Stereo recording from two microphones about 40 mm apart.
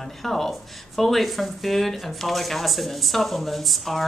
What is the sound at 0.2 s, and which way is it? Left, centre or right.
Speech, centre.